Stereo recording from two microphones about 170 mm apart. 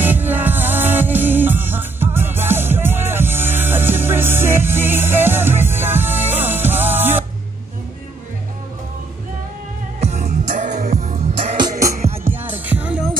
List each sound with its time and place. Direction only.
0.0 s music: 10° right (ahead or behind)
9.9 s music: 40° right (ahead or behind)
12.3 s music: 10° right (ahead or behind)